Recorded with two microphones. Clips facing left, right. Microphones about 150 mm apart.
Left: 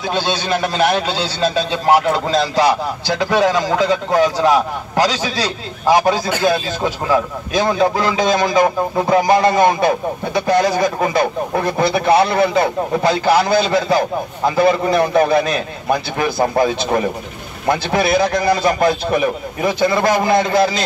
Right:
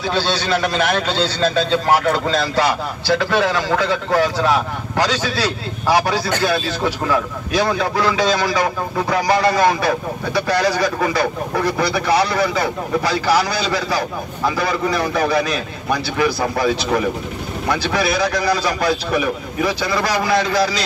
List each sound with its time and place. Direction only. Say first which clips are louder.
0.0 s a man's voice: even; 15° left (ahead or behind)
16.2 s speech: left 2 dB; 50° left (ahead or behind)
17.6 s a man's voice: left 3 dB; 25° left (ahead or behind)